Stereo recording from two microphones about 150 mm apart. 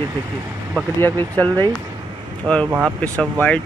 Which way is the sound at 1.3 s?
10° left (ahead or behind).